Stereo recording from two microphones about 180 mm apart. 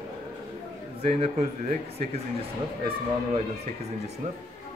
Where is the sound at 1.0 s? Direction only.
35° right (ahead or behind).